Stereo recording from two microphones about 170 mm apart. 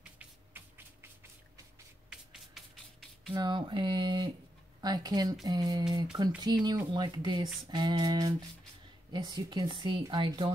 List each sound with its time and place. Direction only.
0.0 s music: 10° right (ahead or behind)
2.0 s music: centre (ahead or behind)
3.3 s speech: 25° right (ahead or behind)